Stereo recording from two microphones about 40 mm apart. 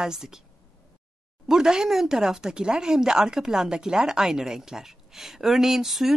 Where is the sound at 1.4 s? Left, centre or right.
Centre.